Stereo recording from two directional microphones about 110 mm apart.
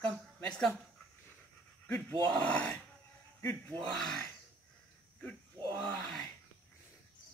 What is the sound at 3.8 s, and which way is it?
Speech, 5° left (ahead or behind).